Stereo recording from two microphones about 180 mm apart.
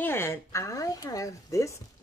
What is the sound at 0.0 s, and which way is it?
Speech, 10° left (ahead or behind).